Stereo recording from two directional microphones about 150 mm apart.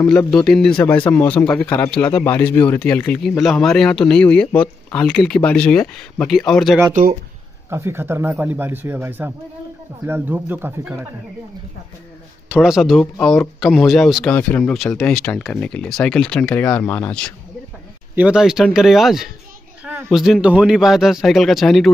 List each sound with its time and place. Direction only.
0.3 s a man's voice: centre (ahead or behind)
6.9 s speech: 60° right (ahead or behind)
7.7 s speech: 15° right (ahead or behind)
12.4 s a man's voice: 5° right (ahead or behind)
18.1 s a man's voice: 5° right (ahead or behind)
19.8 s a sound: 15° right (ahead or behind)
20.1 s a man's voice: centre (ahead or behind)